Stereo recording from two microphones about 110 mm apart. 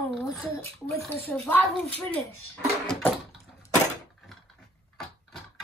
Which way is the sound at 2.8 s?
5° left (ahead or behind).